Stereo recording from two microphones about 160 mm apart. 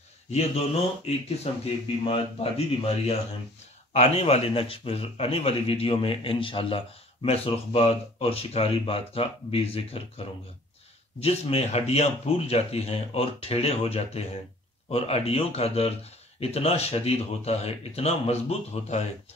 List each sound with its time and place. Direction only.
0.3 s a man's voice: 40° left (ahead or behind)